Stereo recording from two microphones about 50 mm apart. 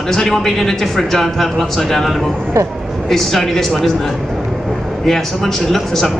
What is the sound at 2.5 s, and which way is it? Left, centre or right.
Speech, right.